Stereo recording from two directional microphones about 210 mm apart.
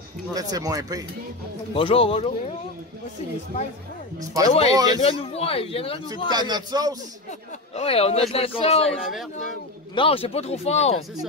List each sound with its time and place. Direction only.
0.3 s speech: 15° right (ahead or behind)
1.8 s speech: 25° left (ahead or behind)
4.2 s speech: 15° right (ahead or behind)
5.0 s speech: 30° left (ahead or behind)
6.3 s a man's voice: 20° right (ahead or behind)
7.2 s speech: 30° left (ahead or behind)